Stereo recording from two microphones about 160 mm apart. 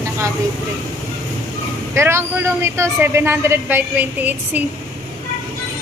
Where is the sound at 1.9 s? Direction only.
15° right (ahead or behind).